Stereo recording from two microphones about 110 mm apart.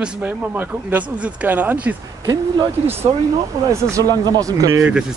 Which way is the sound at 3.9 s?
35° right (ahead or behind).